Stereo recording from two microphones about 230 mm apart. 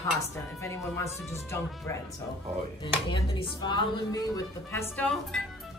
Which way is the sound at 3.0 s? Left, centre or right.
Left.